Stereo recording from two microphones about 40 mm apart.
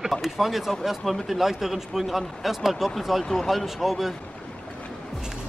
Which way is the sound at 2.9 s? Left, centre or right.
Centre.